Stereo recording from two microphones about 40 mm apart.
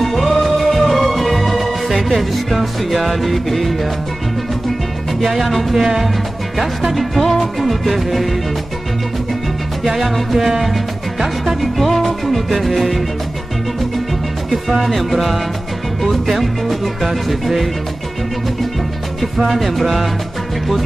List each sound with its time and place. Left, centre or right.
0.0 s music: centre
5.2 s music: centre
7.2 s music: centre
9.8 s music: centre
14.5 s music: centre
19.3 s music: centre